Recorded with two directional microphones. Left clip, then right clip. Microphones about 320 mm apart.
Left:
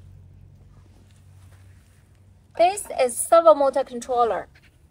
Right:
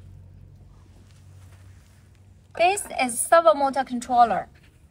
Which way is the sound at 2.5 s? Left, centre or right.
Centre.